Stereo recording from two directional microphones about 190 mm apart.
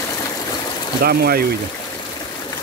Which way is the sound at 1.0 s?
55° right (ahead or behind).